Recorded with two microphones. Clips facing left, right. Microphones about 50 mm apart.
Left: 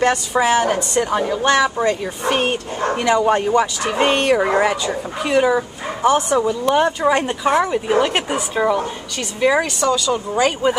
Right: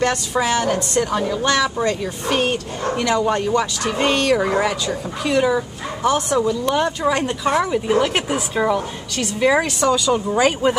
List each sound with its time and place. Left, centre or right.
0.0 s a woman's voice: centre